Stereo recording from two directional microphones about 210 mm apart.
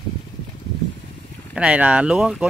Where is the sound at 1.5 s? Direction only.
5° right (ahead or behind).